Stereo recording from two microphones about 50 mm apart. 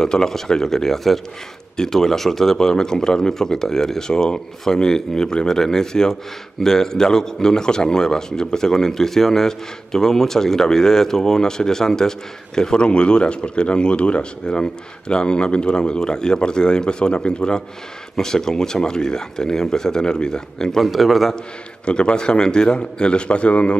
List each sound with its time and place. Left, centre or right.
0.0 s speech: centre
20.8 s a man's voice: centre
21.8 s a man's voice: centre